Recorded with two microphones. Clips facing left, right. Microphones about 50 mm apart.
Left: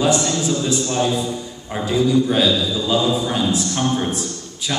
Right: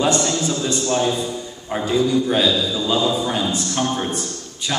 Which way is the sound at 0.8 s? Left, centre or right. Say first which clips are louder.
Right 5 dB; centre.